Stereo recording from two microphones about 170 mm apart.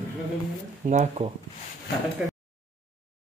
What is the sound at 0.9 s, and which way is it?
Speech, 45° right (ahead or behind).